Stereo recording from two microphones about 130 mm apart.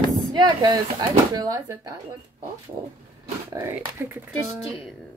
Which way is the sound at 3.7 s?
15° right (ahead or behind).